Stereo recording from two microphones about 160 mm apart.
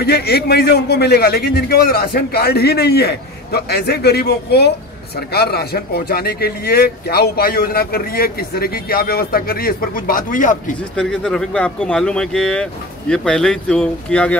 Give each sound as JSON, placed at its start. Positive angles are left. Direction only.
{"t": 0.0, "sound": "a man's voice", "side_deg": 90}
{"t": 11.0, "sound": "speech", "side_deg": 5}